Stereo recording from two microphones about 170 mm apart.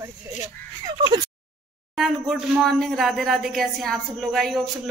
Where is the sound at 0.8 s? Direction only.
25° right (ahead or behind).